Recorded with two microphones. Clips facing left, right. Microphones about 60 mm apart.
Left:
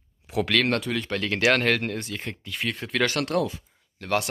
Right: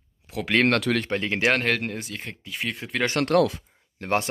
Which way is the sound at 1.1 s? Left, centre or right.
Right.